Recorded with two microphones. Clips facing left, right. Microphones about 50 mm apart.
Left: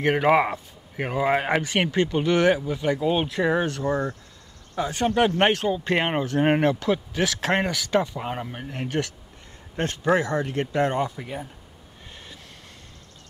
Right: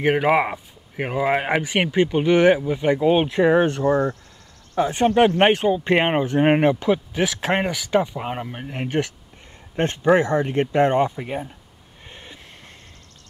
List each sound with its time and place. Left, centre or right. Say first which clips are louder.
0.0 s speech: right 1 dB; centre
12.1 s train: right 3 dB; right